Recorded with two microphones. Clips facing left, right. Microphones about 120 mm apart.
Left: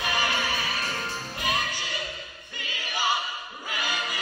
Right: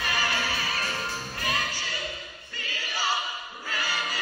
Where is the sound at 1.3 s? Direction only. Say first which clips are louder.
Left 3 dB; 15° left (ahead or behind).